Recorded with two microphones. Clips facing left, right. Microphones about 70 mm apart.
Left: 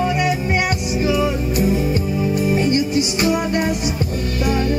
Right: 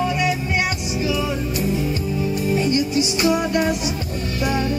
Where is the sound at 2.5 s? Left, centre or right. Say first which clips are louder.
Even; left.